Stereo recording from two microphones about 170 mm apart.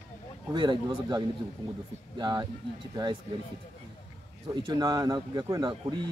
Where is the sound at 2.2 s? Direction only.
25° right (ahead or behind).